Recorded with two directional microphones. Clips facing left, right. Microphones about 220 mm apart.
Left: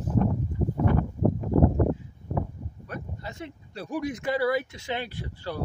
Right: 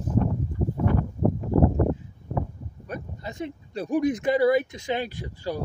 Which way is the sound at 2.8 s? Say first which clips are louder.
Right 3 dB; 15° right (ahead or behind).